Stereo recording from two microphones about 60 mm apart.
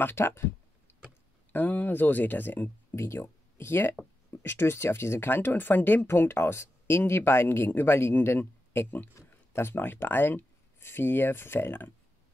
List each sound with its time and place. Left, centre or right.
0.0 s speech: left
1.5 s speech: left
3.2 s speech: left
5.3 s speech: left
6.0 s speech: left